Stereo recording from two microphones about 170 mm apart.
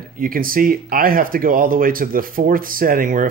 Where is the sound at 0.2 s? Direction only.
55° right (ahead or behind).